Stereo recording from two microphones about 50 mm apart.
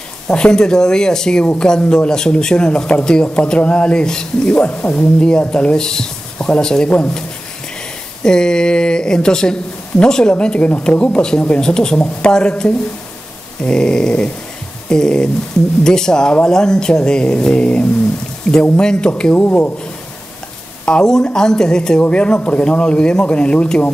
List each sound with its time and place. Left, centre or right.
0.3 s speech: centre
19.3 s speech: left
20.8 s speech: centre